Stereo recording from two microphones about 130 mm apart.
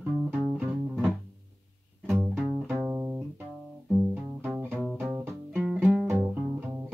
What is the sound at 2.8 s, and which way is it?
Music, 20° right (ahead or behind).